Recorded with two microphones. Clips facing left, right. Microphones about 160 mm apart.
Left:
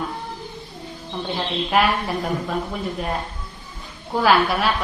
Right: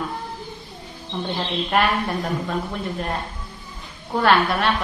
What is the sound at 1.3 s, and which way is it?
Speech, centre (ahead or behind).